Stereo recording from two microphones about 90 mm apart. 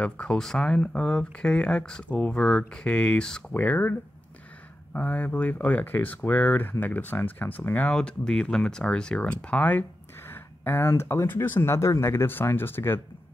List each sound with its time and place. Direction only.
0.0 s speech: 10° left (ahead or behind)
3.5 s speech: 20° left (ahead or behind)
4.9 s speech: 15° left (ahead or behind)